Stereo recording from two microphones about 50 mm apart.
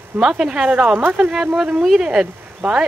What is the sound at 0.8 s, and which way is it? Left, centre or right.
Speech, right.